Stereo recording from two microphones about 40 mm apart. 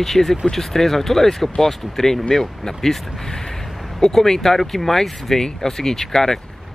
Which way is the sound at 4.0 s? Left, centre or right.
Centre.